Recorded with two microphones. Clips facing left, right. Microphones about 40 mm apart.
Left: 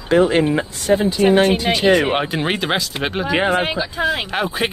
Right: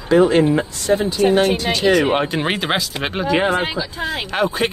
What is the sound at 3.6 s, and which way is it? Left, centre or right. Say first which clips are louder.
Speech: left 2 dB; left.